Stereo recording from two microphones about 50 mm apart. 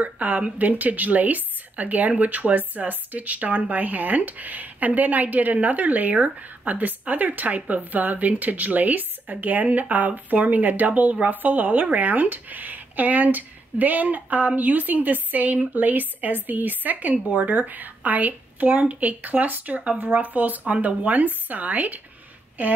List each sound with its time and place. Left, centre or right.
0.0 s a woman's voice: right